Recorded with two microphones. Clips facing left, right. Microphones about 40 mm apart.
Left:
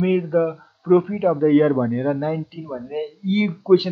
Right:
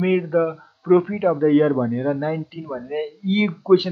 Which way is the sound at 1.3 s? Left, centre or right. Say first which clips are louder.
Left 1 dB; centre.